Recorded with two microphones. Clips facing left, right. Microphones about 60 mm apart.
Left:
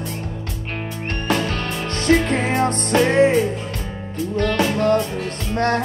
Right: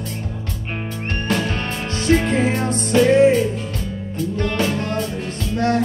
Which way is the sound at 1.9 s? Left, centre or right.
Left.